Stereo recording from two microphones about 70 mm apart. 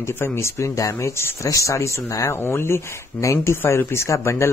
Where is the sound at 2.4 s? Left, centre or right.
Left.